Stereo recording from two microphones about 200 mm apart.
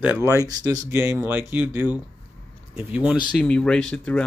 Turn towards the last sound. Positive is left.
turn(degrees=5)  # may be behind; listen again after turning